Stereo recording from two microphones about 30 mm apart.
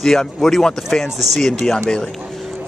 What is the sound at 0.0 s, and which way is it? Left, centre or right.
Speech, centre.